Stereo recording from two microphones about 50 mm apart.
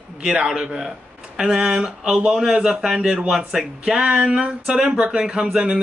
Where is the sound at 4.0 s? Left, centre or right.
Right.